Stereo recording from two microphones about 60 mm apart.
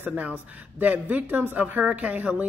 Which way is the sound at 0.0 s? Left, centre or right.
Right.